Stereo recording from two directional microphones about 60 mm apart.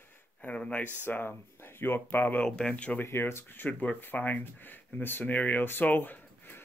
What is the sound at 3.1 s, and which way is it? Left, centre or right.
Speech, left.